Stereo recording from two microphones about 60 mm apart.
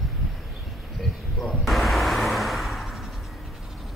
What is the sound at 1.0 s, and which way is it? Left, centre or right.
Vehicle, centre.